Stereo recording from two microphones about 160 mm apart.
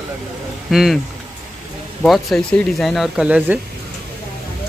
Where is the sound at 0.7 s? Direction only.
Centre (ahead or behind).